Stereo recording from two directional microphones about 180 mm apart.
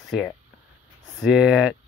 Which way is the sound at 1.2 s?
5° right (ahead or behind).